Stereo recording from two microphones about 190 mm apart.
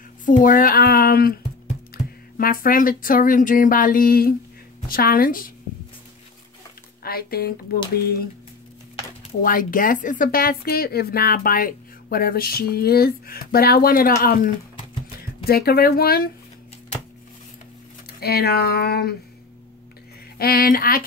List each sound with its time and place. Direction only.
0.2 s speech: 45° left (ahead or behind)
7.0 s speech: 55° left (ahead or behind)
9.4 s speech: 45° left (ahead or behind)
18.2 s a sound: 55° left (ahead or behind)
20.3 s speech: 50° left (ahead or behind)